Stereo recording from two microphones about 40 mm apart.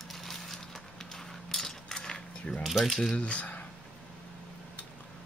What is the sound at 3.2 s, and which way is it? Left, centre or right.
Speech, left.